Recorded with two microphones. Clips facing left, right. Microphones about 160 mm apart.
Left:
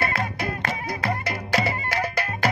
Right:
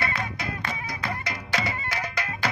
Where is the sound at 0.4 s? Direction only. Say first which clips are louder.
Left 4 dB; 55° left (ahead or behind).